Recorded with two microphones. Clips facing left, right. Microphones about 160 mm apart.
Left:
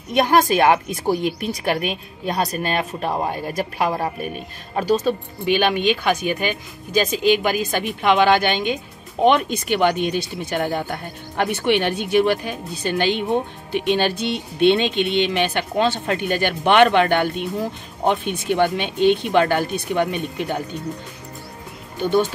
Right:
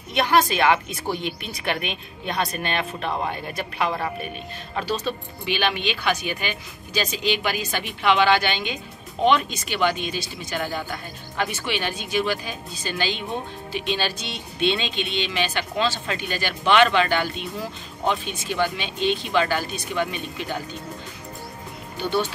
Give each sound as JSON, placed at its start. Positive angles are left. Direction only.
{"t": 0.1, "sound": "speech", "side_deg": 45}